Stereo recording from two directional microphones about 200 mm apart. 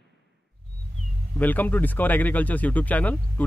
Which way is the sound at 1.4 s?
10° left (ahead or behind).